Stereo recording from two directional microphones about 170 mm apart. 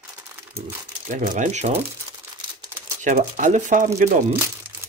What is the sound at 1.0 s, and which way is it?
Speech, 50° right (ahead or behind).